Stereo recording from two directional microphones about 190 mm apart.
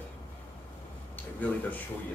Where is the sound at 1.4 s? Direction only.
10° left (ahead or behind).